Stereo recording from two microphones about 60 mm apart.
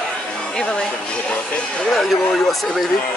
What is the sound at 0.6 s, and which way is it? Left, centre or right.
Speech, centre.